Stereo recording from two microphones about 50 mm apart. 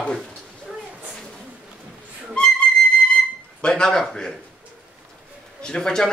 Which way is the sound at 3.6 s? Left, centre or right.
Centre.